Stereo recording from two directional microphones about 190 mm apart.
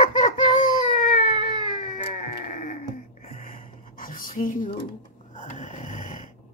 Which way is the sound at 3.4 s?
50° left (ahead or behind).